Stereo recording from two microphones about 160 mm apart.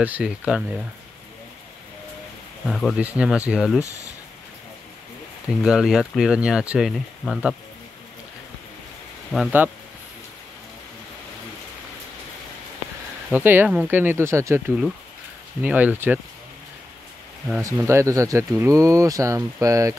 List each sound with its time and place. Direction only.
0.0 s speech: 5° right (ahead or behind)
2.6 s speech: centre (ahead or behind)
5.6 s speech: 5° right (ahead or behind)
9.3 s speech: centre (ahead or behind)
13.3 s speech: 10° right (ahead or behind)
15.6 s speech: 10° right (ahead or behind)
17.6 s speech: 20° right (ahead or behind)